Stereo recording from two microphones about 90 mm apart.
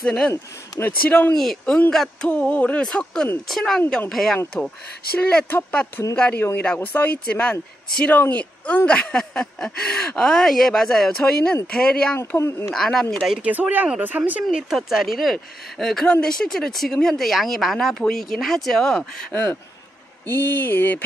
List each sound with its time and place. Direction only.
0.0 s speech: 5° left (ahead or behind)
0.3 s speech: 30° left (ahead or behind)
1.0 s speech: 15° left (ahead or behind)
1.3 s speech: 5° left (ahead or behind)
5.5 s speech: 20° left (ahead or behind)
12.4 s speech: 30° left (ahead or behind)
12.7 s speech: 5° left (ahead or behind)
13.4 s speech: 20° right (ahead or behind)
14.5 s speech: 5° right (ahead or behind)
20.2 s speech: 20° left (ahead or behind)